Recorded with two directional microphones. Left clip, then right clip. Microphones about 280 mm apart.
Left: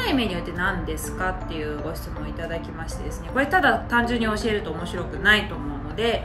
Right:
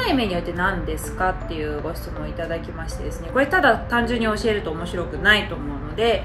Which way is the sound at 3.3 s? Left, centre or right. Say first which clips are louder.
Right 2 dB; centre.